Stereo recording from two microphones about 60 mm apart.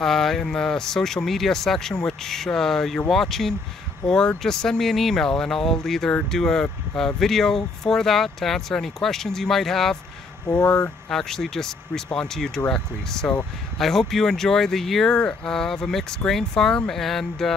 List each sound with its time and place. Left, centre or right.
0.0 s speech: centre
10.5 s speech: left
11.1 s speech: centre